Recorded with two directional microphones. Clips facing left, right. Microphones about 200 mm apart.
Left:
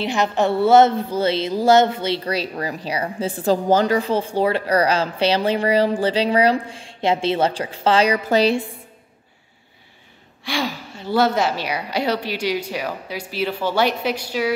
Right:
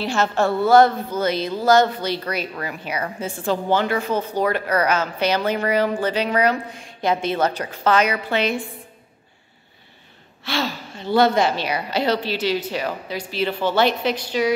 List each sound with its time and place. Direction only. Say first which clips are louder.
0.0 s a woman's voice: left 1 dB; 15° left (ahead or behind); by 8.5 s 35° left (ahead or behind)
10.4 s a woman's voice: even; 15° left (ahead or behind)